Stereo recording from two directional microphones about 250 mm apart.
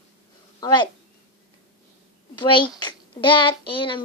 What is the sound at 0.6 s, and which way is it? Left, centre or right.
Speech, centre.